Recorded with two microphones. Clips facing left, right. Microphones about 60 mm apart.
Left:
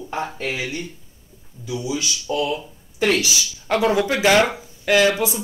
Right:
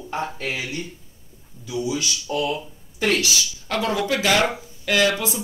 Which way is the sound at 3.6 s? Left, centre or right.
Left.